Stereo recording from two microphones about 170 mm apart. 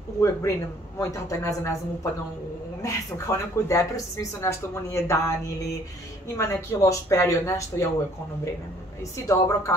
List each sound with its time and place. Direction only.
0.2 s speech: 15° left (ahead or behind)
2.8 s speech: 20° left (ahead or behind)
6.3 s speech: 20° left (ahead or behind)
9.1 s speech: 15° left (ahead or behind)